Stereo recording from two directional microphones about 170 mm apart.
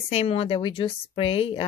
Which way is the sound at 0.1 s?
35° left (ahead or behind).